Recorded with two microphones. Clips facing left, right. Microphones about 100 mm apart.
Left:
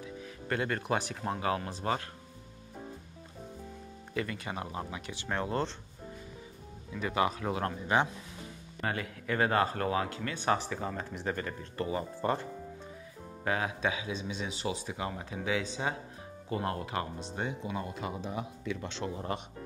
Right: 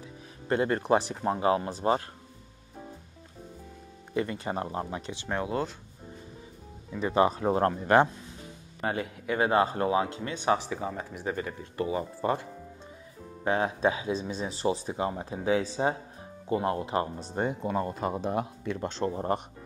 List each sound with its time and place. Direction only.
0.5 s speech: 25° right (ahead or behind)
4.1 s speech: 25° right (ahead or behind)
4.7 s speech: 35° right (ahead or behind)
5.1 s a man's voice: 15° right (ahead or behind)
7.0 s speech: 30° right (ahead or behind)
8.8 s a man's voice: 25° right (ahead or behind)
13.4 s speech: 30° right (ahead or behind)
17.2 s speech: 50° right (ahead or behind)
18.7 s speech: 45° right (ahead or behind)